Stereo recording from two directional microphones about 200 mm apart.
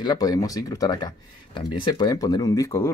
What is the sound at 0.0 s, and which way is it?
Speech, 20° left (ahead or behind).